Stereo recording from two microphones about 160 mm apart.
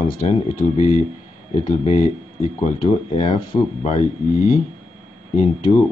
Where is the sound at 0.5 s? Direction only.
50° left (ahead or behind).